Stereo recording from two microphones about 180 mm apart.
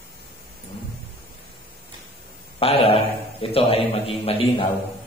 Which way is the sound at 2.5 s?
30° left (ahead or behind).